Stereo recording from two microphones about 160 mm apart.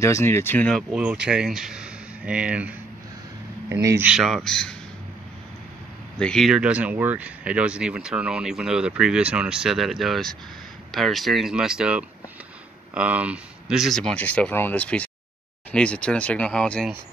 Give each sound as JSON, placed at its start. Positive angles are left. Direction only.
{"t": 0.0, "sound": "speech", "side_deg": 15}
{"t": 0.9, "sound": "speech", "side_deg": -5}
{"t": 4.1, "sound": "speech", "side_deg": 0}
{"t": 6.1, "sound": "speech", "side_deg": 5}